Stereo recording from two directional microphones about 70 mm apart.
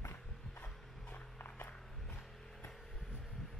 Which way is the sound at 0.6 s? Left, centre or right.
Left.